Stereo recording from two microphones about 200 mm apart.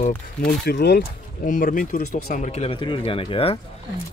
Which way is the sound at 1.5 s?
40° left (ahead or behind).